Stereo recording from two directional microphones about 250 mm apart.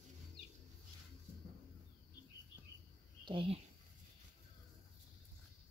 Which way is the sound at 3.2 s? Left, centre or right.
Right.